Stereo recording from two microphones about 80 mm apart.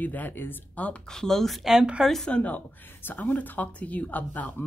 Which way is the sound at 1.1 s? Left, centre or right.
Centre.